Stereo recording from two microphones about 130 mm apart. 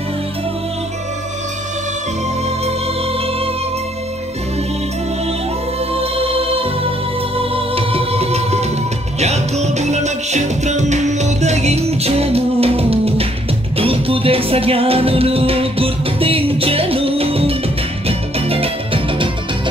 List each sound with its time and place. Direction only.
2.6 s music: 45° right (ahead or behind)
5.9 s music: 45° right (ahead or behind)